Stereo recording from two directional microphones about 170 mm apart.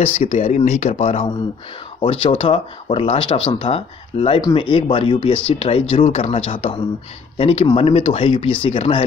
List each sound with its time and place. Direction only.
0.0 s speech: 40° left (ahead or behind)
4.4 s speech: 25° left (ahead or behind)